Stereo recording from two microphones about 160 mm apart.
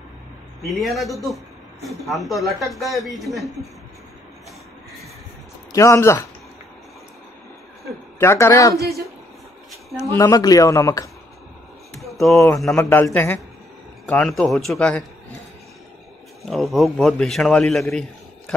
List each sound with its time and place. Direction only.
0.7 s speech: centre (ahead or behind)
5.7 s a man's voice: 20° left (ahead or behind)
8.2 s a man's voice: 15° left (ahead or behind)
10.1 s a man's voice: 20° left (ahead or behind)
12.0 s a sound: centre (ahead or behind)
12.7 s a man's voice: 15° left (ahead or behind)
14.0 s speech: 5° left (ahead or behind)
16.4 s speech: centre (ahead or behind)